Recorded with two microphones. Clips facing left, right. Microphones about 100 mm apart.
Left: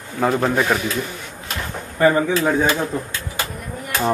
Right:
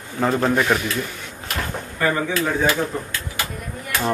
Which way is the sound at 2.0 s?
20° left (ahead or behind).